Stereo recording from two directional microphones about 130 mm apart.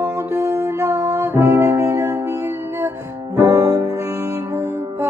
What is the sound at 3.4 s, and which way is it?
Music, 25° right (ahead or behind).